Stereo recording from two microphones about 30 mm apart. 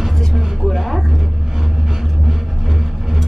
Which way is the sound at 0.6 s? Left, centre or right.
Centre.